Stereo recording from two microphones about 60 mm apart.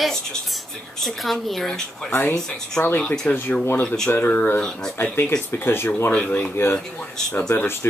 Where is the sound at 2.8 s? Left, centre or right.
Left.